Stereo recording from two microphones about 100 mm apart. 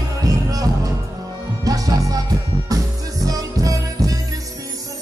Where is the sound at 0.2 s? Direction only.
35° right (ahead or behind).